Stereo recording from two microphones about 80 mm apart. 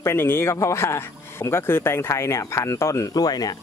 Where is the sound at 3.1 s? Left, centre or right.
Left.